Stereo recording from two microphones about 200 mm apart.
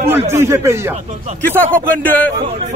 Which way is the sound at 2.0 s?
5° left (ahead or behind).